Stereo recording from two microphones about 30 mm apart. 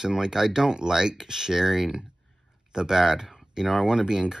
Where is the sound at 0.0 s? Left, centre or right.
Right.